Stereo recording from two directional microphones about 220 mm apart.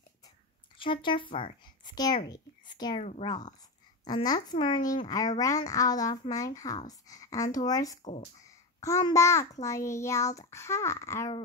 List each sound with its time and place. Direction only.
0.7 s speech: 20° left (ahead or behind)
3.0 s speech: 30° left (ahead or behind)
4.0 s a child's voice: 20° left (ahead or behind)